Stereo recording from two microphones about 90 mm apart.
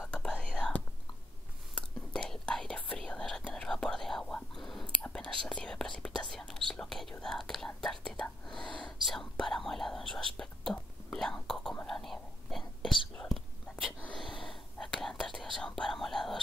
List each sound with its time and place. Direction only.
0.0 s whispering: 10° left (ahead or behind)
1.8 s whispering: 5° left (ahead or behind)